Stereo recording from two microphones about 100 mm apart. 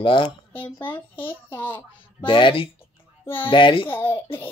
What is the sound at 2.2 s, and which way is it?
Speech, 60° left (ahead or behind).